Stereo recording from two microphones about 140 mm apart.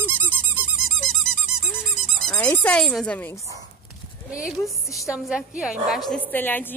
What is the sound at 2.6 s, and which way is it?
Speech, 5° left (ahead or behind).